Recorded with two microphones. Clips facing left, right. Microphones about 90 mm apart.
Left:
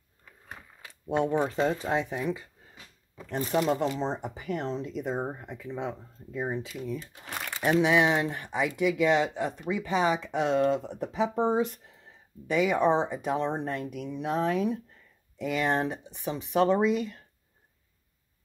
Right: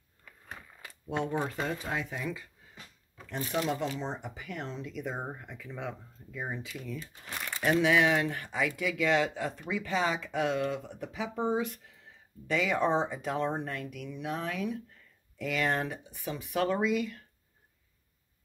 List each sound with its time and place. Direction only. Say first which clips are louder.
1.1 s speech: left 6 dB; 20° left (ahead or behind)
3.5 s speech: left 5 dB; 35° left (ahead or behind)
7.8 s speech: left 2 dB; 20° left (ahead or behind)
12.4 s speech: left 4 dB; 15° left (ahead or behind)
15.3 s speech: left 3 dB; 20° left (ahead or behind)